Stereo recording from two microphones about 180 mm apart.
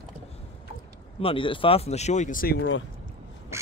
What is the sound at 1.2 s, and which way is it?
Speech, 30° left (ahead or behind).